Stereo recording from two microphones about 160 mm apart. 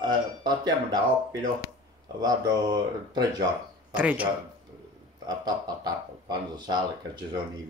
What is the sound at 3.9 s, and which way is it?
Speech, 10° right (ahead or behind).